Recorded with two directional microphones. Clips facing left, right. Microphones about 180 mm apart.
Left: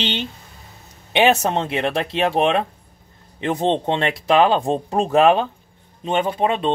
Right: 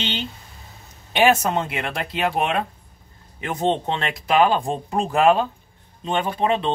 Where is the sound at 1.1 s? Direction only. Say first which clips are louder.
Left 1 dB; 25° left (ahead or behind).